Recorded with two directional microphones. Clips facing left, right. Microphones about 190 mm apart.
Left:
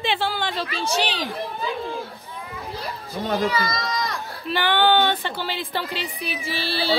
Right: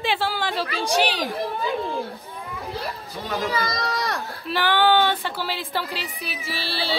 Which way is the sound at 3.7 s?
60° right (ahead or behind).